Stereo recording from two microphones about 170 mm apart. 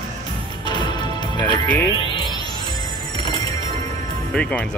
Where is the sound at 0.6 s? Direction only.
25° left (ahead or behind).